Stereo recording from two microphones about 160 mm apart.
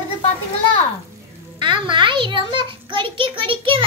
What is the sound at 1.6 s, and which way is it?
A child's voice, 30° right (ahead or behind).